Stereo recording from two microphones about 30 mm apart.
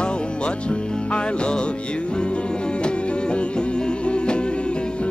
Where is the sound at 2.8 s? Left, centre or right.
Left.